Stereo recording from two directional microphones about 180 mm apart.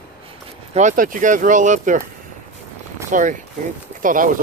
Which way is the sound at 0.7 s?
45° right (ahead or behind).